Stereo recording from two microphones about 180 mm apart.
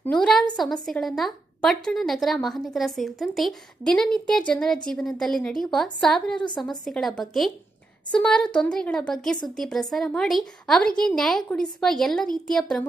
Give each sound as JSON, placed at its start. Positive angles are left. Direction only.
{"t": 0.0, "sound": "a woman's voice", "side_deg": 5}
{"t": 6.3, "sound": "a woman's voice", "side_deg": 25}
{"t": 6.8, "sound": "a woman's voice", "side_deg": 0}